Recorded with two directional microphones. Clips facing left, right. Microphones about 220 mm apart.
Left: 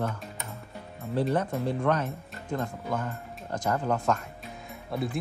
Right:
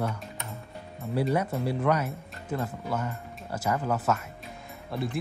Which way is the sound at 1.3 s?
10° right (ahead or behind).